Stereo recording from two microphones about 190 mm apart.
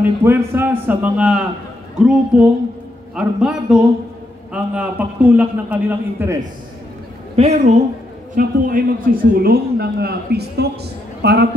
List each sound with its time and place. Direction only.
0.0 s a man's voice: 10° right (ahead or behind)
7.3 s a woman's voice: 35° right (ahead or behind)
8.4 s speech: 45° right (ahead or behind)